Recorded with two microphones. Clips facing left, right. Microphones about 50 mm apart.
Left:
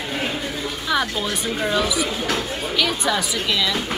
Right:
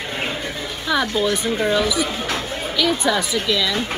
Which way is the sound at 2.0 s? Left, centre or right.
Right.